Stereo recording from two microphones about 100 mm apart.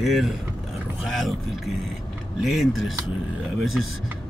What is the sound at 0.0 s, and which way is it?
Speech, centre (ahead or behind).